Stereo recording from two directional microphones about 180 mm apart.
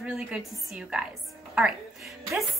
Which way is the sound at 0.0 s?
5° right (ahead or behind).